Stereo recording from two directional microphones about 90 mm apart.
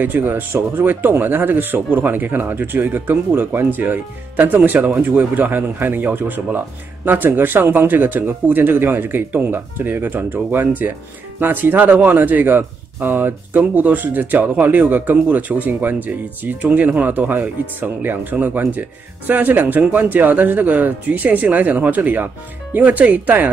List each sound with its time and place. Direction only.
0.0 s speech: 20° right (ahead or behind)